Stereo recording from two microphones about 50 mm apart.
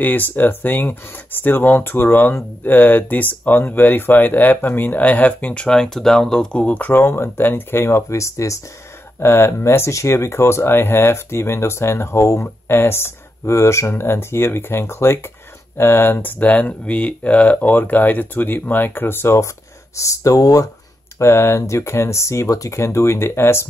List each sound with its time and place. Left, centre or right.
0.0 s speech: left
5.7 s speech: centre
6.6 s speech: left
6.9 s speech: left
9.2 s speech: left
12.4 s speech: left
13.9 s speech: left
16.2 s speech: left
20.0 s speech: left
21.2 s speech: left